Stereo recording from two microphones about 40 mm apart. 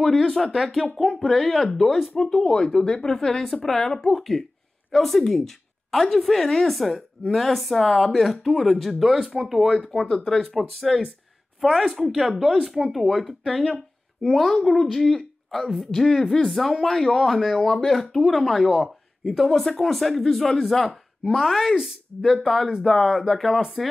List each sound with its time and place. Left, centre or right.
0.0 s speech: centre
2.2 s speech: centre
10.0 s speech: centre
16.8 s speech: centre
17.3 s speech: centre